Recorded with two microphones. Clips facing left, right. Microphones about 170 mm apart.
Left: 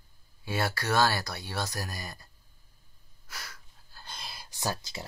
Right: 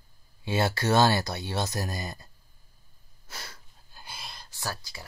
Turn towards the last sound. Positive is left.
turn(degrees=20)  # may be behind; listen again after turning